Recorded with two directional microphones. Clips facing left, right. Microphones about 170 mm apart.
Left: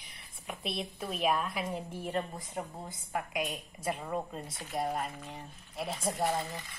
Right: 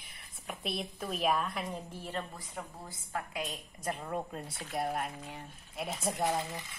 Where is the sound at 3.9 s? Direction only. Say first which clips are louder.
Left 1 dB; centre (ahead or behind).